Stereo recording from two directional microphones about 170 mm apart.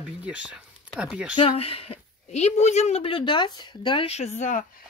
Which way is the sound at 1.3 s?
35° left (ahead or behind).